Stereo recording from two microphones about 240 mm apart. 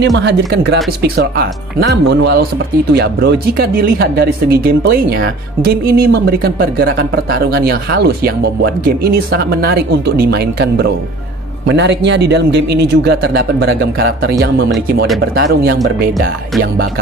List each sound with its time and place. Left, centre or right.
0.0 s speech: right